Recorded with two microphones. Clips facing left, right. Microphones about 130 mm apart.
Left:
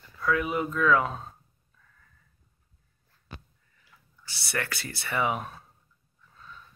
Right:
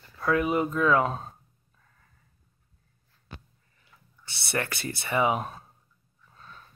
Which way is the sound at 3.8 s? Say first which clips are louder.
Right 1 dB; 25° right (ahead or behind).